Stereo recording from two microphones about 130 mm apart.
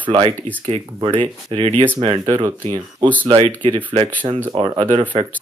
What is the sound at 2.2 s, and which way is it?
Speech, 35° right (ahead or behind).